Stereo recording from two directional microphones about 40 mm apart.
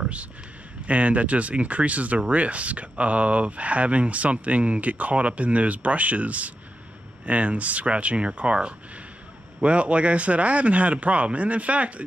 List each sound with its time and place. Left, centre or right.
0.8 s speech: right